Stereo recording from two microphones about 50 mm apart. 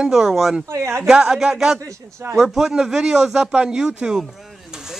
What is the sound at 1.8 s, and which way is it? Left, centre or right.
Speech, right.